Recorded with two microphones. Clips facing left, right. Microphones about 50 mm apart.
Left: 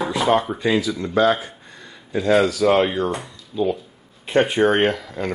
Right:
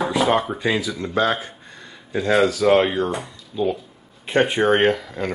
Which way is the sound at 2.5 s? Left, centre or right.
Centre.